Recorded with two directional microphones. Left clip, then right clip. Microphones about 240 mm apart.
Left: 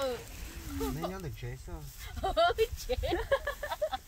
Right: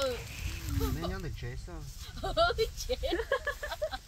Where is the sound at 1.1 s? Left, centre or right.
Right.